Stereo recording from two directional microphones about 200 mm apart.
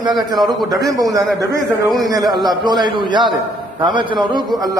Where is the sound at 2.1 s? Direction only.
20° right (ahead or behind).